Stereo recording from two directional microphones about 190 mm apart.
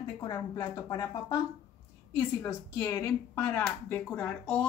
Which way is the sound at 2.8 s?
15° left (ahead or behind).